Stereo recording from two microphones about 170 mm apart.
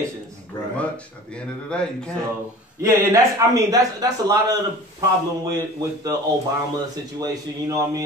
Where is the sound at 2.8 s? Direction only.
20° right (ahead or behind).